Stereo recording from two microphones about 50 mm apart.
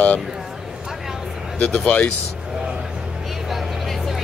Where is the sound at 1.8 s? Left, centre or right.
Left.